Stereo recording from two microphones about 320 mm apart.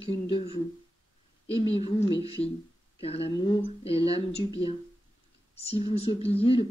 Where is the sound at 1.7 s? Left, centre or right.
Centre.